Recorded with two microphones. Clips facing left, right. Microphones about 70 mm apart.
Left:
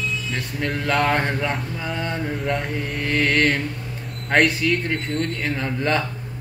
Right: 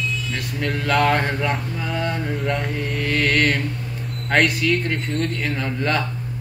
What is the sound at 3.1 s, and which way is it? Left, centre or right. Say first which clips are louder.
Mantra: even; centre.